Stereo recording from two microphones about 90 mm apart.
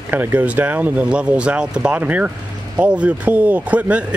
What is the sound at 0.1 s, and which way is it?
Speech, 20° right (ahead or behind).